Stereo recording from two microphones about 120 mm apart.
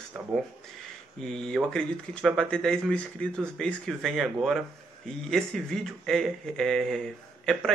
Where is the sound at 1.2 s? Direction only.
5° left (ahead or behind).